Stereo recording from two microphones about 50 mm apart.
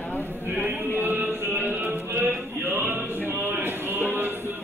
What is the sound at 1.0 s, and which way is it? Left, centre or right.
Music, right.